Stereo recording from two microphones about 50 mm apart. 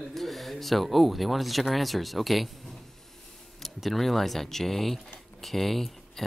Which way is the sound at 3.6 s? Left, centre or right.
Centre.